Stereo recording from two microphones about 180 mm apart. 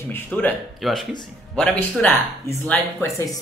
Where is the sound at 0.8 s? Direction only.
Centre (ahead or behind).